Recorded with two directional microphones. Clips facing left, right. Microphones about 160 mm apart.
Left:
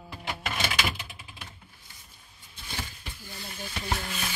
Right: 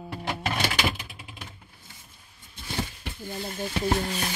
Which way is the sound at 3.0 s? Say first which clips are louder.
Right 9 dB; 55° right (ahead or behind).